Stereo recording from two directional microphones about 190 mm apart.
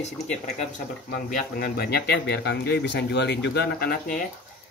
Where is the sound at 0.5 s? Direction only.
45° left (ahead or behind).